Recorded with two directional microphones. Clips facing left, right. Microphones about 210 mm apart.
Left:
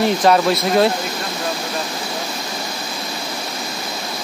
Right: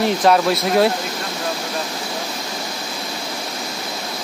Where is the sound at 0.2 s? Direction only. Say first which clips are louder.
Left 1 dB; 5° right (ahead or behind).